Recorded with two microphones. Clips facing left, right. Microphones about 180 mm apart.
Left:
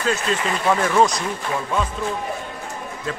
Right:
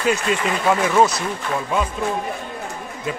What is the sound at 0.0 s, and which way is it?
Speech, 15° right (ahead or behind).